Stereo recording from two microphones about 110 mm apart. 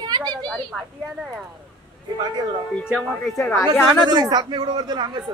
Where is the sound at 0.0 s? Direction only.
40° right (ahead or behind).